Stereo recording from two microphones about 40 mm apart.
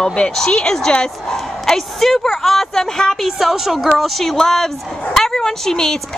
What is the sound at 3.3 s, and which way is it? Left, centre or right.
A woman's voice, centre.